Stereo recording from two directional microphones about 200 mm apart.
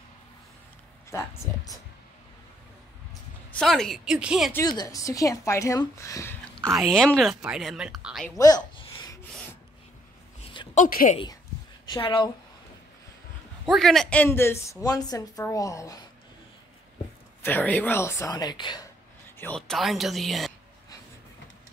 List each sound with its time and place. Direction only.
1.1 s speech: 15° left (ahead or behind)
3.5 s speech: centre (ahead or behind)
4.5 s speech: 15° left (ahead or behind)
6.6 s speech: centre (ahead or behind)
8.4 s a sound: 20° left (ahead or behind)
10.5 s a sound: 25° left (ahead or behind)
10.8 s a woman's voice: 40° left (ahead or behind)
11.9 s a woman's voice: 25° left (ahead or behind)
13.7 s speech: centre (ahead or behind); by 16.1 s 15° left (ahead or behind)
17.4 s speech: 10° left (ahead or behind)
19.3 s speech: 5° left (ahead or behind)